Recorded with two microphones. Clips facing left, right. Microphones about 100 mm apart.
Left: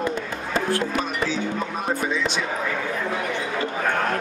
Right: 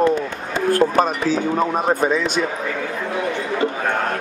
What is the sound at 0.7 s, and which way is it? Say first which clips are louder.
Speech: right 13 dB; 45° right (ahead or behind).